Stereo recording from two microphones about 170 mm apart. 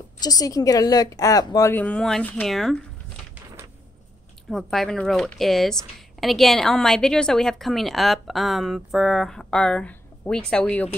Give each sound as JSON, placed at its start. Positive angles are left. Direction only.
{"t": 0.2, "sound": "a woman's voice", "side_deg": 20}
{"t": 4.5, "sound": "speech", "side_deg": 0}